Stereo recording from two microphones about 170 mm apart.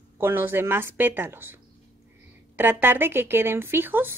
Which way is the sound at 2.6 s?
10° right (ahead or behind).